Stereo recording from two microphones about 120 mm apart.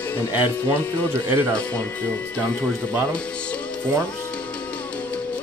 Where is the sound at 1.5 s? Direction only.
10° left (ahead or behind).